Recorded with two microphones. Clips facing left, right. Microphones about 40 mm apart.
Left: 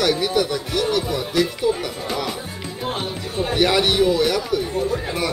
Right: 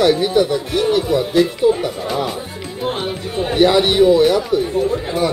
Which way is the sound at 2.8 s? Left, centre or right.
Centre.